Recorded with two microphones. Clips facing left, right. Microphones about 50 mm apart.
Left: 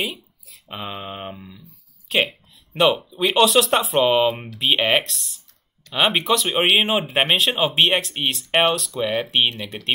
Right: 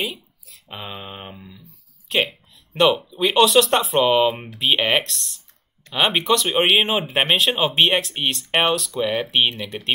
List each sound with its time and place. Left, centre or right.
0.0 s speech: centre